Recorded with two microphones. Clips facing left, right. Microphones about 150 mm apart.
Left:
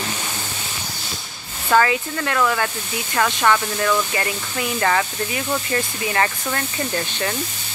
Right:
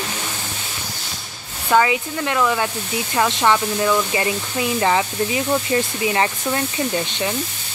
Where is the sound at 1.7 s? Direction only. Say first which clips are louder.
Right 1 dB; 10° right (ahead or behind).